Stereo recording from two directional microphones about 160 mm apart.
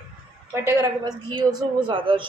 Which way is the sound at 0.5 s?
15° right (ahead or behind).